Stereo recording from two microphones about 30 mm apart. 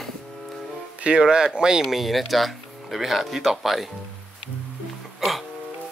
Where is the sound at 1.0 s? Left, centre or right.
Right.